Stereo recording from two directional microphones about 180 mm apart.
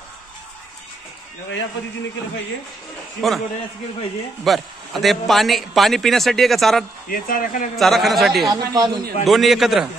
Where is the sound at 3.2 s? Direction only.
Centre (ahead or behind).